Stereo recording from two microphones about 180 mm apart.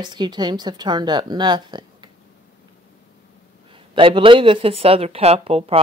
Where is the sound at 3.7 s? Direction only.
30° right (ahead or behind).